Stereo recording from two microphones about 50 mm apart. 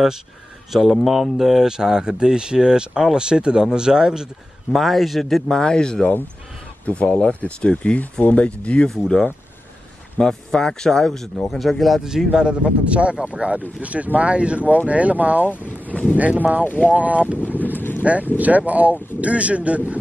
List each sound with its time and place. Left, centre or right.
0.7 s speech: centre
4.7 s speech: centre
6.9 s speech: left
8.4 s speech: left
8.8 s speech: centre
12.0 s speech: centre; by 15.4 s right
15.4 s speech: left
16.2 s speech: right
16.6 s speech: left
16.9 s speech: right
17.5 s wind noise: right
17.7 s boat: left
18.0 s speech: right